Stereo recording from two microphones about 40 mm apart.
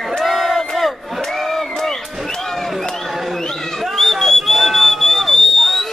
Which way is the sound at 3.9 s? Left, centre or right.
Centre.